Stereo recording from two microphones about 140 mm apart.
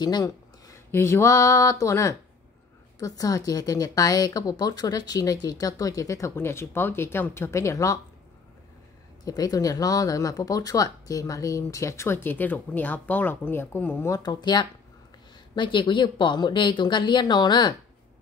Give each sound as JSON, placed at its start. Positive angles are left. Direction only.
{"t": 0.0, "sound": "speech", "side_deg": 25}
{"t": 9.2, "sound": "speech", "side_deg": 25}